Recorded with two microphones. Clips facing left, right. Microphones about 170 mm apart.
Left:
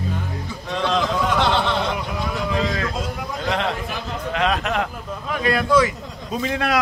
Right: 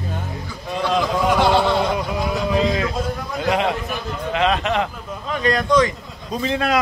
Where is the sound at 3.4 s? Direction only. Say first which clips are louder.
Right 4 dB; 10° right (ahead or behind).